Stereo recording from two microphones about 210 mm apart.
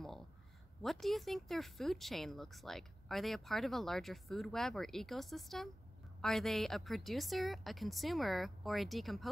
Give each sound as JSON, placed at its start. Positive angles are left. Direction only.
{"t": 0.8, "sound": "speech", "side_deg": 0}